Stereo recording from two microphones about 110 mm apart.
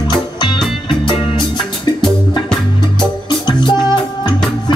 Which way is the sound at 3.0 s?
45° left (ahead or behind).